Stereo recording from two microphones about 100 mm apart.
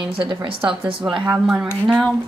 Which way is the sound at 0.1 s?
55° right (ahead or behind).